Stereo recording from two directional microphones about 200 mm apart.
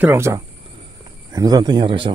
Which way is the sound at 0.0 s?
10° right (ahead or behind).